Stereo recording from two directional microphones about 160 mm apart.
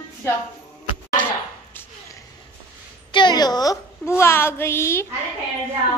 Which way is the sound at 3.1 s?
25° left (ahead or behind).